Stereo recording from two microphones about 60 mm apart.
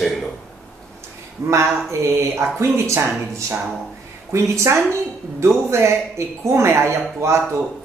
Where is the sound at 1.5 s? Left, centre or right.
Right.